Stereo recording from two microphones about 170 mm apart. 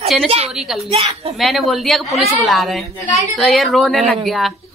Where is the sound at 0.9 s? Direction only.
35° right (ahead or behind).